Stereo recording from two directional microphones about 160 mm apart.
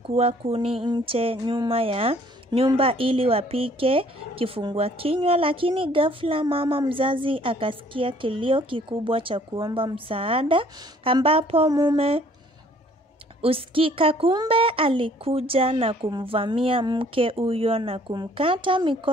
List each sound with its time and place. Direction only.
0.0 s a woman's voice: 40° right (ahead or behind)
11.7 s speech: 20° right (ahead or behind)
13.4 s a woman's voice: 35° right (ahead or behind)